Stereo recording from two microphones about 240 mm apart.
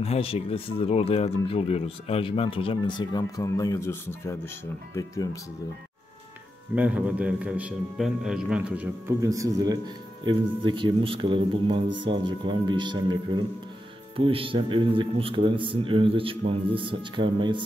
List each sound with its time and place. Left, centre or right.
0.0 s speech: left
6.7 s a man's voice: centre